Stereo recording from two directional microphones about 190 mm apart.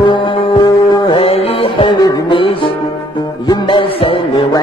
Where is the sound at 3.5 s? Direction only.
25° left (ahead or behind).